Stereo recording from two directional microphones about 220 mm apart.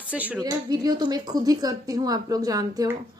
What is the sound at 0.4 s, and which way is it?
A woman's voice, 15° right (ahead or behind).